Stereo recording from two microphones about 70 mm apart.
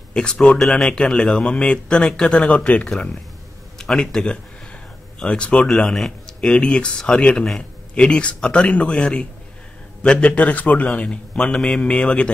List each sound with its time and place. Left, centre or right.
0.1 s a man's voice: centre